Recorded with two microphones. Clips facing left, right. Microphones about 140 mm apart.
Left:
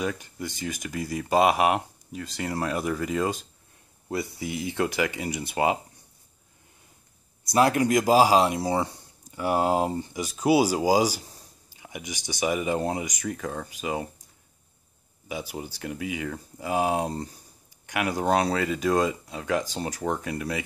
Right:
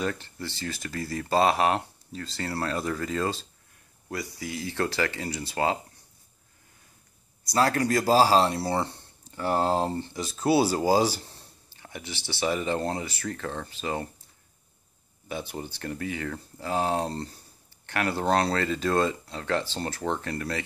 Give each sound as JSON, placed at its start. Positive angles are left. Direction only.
{"t": 0.0, "sound": "speech", "side_deg": 10}
{"t": 7.5, "sound": "speech", "side_deg": 15}
{"t": 15.2, "sound": "speech", "side_deg": 10}